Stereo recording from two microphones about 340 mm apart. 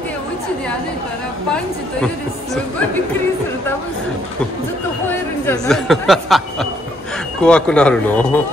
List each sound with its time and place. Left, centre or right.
5.5 s speech: centre